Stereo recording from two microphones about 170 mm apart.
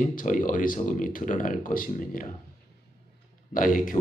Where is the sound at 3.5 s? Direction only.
50° left (ahead or behind).